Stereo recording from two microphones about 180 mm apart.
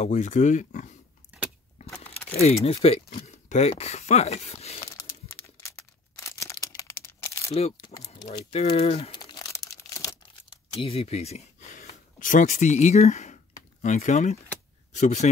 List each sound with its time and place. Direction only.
0.0 s speech: 40° left (ahead or behind)
2.2 s speech: 35° left (ahead or behind)
4.9 s crumpling: 15° left (ahead or behind)
7.7 s speech: 25° left (ahead or behind)
8.3 s crumpling: 30° left (ahead or behind); by 10.1 s 15° left (ahead or behind)
10.5 s speech: 30° left (ahead or behind)